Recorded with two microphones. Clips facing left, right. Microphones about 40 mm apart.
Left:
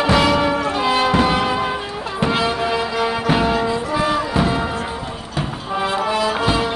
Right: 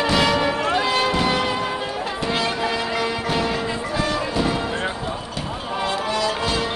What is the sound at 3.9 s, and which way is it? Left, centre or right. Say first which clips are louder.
Music: left 4 dB; centre.